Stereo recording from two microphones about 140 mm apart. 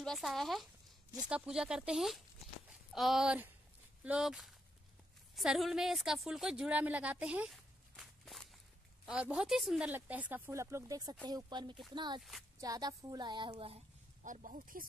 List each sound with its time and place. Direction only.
0.0 s a woman's voice: centre (ahead or behind)
7.5 s walk: centre (ahead or behind)
9.0 s a woman's voice: 5° right (ahead or behind); by 12.2 s 30° right (ahead or behind)
12.2 s a woman's voice: centre (ahead or behind)
12.5 s a woman's voice: 25° right (ahead or behind); by 13.8 s 45° right (ahead or behind)
14.2 s speech: 70° right (ahead or behind)